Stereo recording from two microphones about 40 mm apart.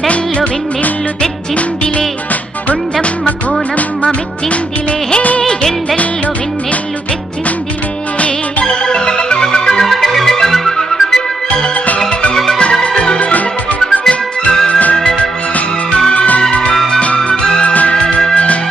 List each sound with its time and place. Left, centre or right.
0.0 s music: left
2.7 s music: left
8.6 s music: left
9.8 s music: centre
12.8 s music: left
14.7 s music: left
16.1 s music: left